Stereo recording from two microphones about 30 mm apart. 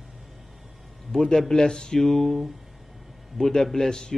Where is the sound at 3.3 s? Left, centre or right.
Centre.